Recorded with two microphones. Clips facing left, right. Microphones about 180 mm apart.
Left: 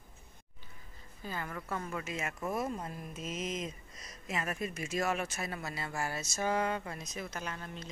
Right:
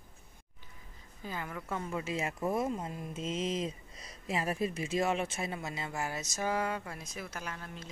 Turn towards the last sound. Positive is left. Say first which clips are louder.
# left 1 dB
turn(degrees=-5)  # may be behind; listen again after turning